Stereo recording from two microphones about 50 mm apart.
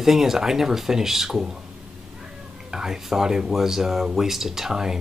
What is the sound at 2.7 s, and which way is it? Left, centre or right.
Speech, centre.